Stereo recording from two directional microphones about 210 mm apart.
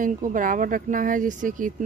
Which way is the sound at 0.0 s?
40° right (ahead or behind).